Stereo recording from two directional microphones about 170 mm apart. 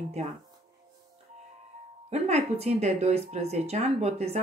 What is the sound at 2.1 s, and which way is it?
Speech, 40° right (ahead or behind).